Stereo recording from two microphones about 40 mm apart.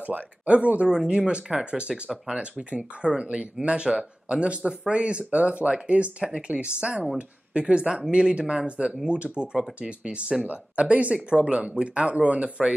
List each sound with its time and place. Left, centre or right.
0.0 s speech: right